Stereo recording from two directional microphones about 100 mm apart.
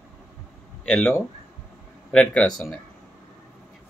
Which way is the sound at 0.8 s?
10° left (ahead or behind).